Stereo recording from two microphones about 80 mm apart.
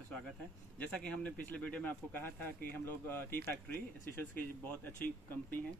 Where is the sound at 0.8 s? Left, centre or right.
Centre.